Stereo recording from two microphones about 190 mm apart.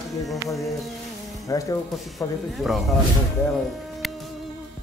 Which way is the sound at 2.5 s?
Centre (ahead or behind).